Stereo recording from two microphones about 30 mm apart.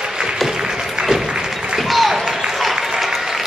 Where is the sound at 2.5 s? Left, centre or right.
Centre.